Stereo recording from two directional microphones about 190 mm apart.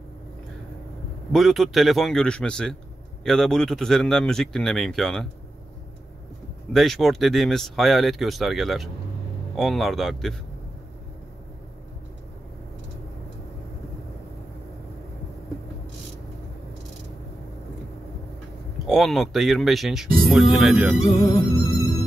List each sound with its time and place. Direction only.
1.3 s speech: centre (ahead or behind)
6.7 s speech: centre (ahead or behind)
18.9 s speech: centre (ahead or behind)
21.0 s music: 20° left (ahead or behind)